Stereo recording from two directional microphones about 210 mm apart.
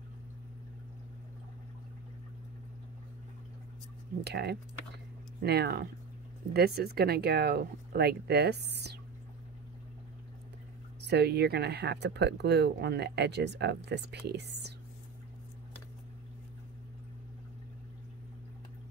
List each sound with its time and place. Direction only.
4.2 s speech: 50° right (ahead or behind)
11.0 s speech: 55° right (ahead or behind)